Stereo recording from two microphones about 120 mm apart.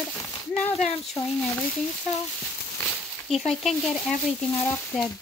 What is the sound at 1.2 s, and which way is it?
Speech, 40° left (ahead or behind).